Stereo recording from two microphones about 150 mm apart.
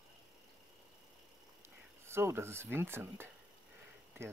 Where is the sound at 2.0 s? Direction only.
15° right (ahead or behind).